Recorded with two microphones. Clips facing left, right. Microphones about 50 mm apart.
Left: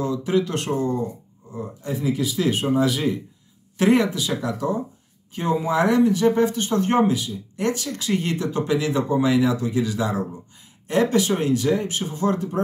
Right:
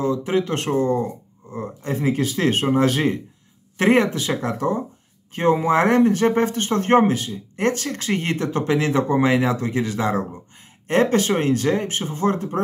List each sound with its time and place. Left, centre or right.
0.0 s speech: right
3.7 s speech: right